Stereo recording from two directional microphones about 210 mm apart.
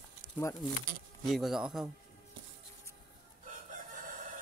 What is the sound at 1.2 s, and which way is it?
Speech, centre (ahead or behind).